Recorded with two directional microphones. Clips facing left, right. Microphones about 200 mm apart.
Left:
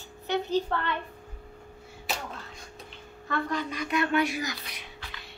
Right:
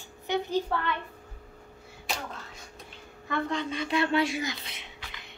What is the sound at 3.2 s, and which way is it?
Speech, 20° right (ahead or behind).